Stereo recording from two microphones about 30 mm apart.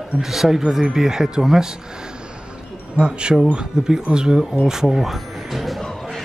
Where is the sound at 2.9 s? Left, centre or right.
Right; by 5.1 s centre.